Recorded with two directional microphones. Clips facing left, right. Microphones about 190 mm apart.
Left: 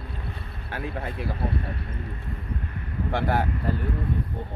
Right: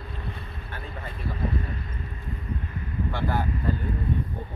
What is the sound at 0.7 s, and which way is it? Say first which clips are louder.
Speech: left 8 dB; 70° left (ahead or behind).